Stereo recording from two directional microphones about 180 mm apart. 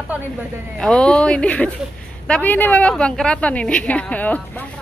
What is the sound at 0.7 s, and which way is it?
A woman's voice, 5° left (ahead or behind).